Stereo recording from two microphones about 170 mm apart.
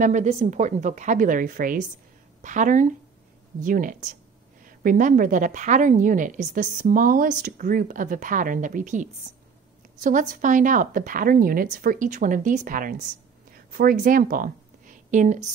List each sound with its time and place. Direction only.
0.0 s a woman's voice: 45° right (ahead or behind)